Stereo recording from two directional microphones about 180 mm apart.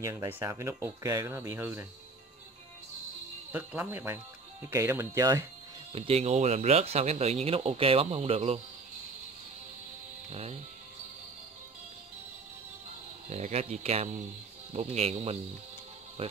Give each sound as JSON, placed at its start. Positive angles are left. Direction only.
{"t": 0.0, "sound": "speech", "side_deg": -15}
{"t": 3.5, "sound": "speech", "side_deg": -10}
{"t": 5.9, "sound": "speech", "side_deg": -35}
{"t": 10.3, "sound": "speech", "side_deg": -35}
{"t": 13.3, "sound": "speech", "side_deg": -35}